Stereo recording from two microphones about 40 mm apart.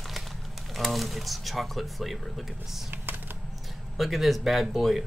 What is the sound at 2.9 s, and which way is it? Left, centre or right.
Typing, right.